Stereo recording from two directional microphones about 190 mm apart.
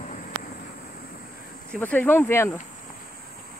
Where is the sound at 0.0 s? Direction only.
45° left (ahead or behind).